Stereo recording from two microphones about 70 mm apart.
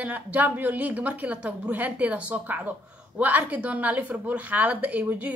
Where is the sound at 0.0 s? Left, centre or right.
Right.